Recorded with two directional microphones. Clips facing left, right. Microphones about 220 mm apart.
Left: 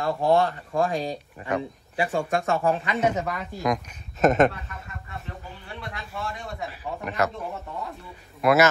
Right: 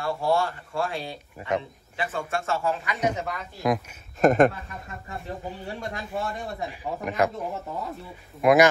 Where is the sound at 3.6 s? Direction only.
5° right (ahead or behind).